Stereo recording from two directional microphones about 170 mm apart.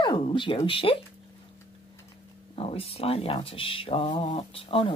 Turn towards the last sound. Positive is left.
turn(degrees=30)  # may be behind; listen again after turning